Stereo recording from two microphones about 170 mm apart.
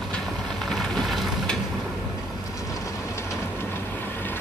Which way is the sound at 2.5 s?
15° left (ahead or behind).